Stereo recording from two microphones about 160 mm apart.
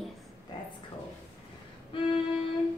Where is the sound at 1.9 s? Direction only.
35° left (ahead or behind).